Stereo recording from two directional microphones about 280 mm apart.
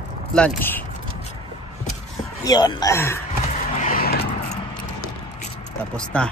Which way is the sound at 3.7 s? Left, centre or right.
Left.